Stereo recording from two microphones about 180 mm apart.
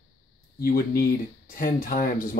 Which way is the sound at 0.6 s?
55° left (ahead or behind).